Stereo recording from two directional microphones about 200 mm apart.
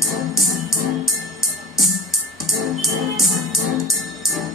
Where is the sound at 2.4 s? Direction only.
Centre (ahead or behind).